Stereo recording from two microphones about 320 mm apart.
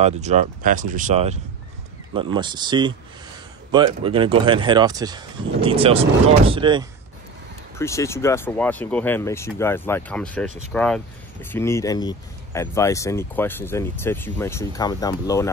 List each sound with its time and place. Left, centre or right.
0.0 s speech: right
7.7 s speech: centre